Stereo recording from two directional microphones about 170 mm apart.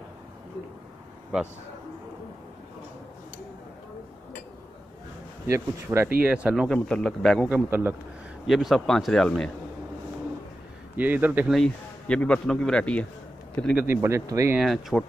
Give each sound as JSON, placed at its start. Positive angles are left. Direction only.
{"t": 1.3, "sound": "speech", "side_deg": -5}
{"t": 5.5, "sound": "speech", "side_deg": -15}
{"t": 6.7, "sound": "speech", "side_deg": 5}
{"t": 7.4, "sound": "speech", "side_deg": -10}
{"t": 11.0, "sound": "speech", "side_deg": -10}
{"t": 11.5, "sound": "speech", "side_deg": 5}
{"t": 13.7, "sound": "speech", "side_deg": -15}
{"t": 14.6, "sound": "speech", "side_deg": 0}